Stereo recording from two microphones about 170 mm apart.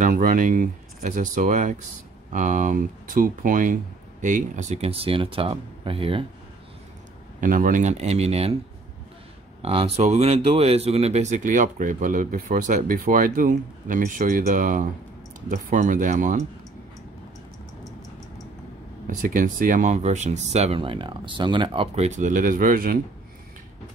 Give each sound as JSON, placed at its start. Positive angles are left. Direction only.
{"t": 0.0, "sound": "speech", "side_deg": -50}
{"t": 7.3, "sound": "speech", "side_deg": -50}
{"t": 9.6, "sound": "speech", "side_deg": -35}
{"t": 19.0, "sound": "speech", "side_deg": -55}